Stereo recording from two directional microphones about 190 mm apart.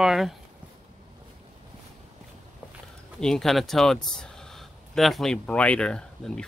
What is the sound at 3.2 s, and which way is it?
Speech, centre (ahead or behind).